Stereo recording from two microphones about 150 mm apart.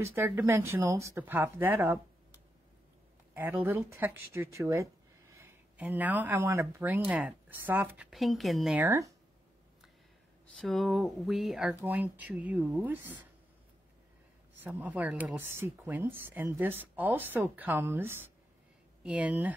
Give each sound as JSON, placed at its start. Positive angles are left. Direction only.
{"t": 0.0, "sound": "speech", "side_deg": -20}
{"t": 5.4, "sound": "speech", "side_deg": -10}
{"t": 8.1, "sound": "speech", "side_deg": 0}
{"t": 8.7, "sound": "speech", "side_deg": -15}
{"t": 10.4, "sound": "speech", "side_deg": 5}
{"t": 14.6, "sound": "speech", "side_deg": -10}